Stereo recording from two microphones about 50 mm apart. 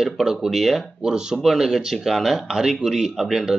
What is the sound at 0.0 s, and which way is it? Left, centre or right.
Speech, centre.